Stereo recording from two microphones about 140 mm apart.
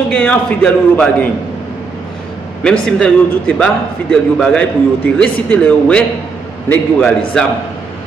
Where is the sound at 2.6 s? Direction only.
5° left (ahead or behind).